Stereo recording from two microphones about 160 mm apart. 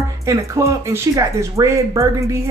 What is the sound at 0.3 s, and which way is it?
Speech, 20° right (ahead or behind).